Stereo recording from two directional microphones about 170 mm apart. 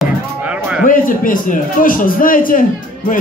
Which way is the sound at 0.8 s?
55° left (ahead or behind).